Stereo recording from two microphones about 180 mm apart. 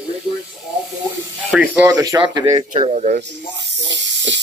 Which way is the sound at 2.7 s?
40° right (ahead or behind).